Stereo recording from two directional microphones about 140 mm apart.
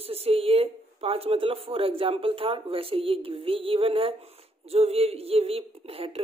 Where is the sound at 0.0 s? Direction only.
45° right (ahead or behind).